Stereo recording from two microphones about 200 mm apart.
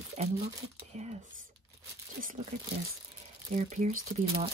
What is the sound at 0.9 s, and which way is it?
Speech, 35° right (ahead or behind).